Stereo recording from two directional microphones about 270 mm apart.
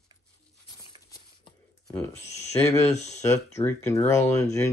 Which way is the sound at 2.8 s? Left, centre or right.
Left.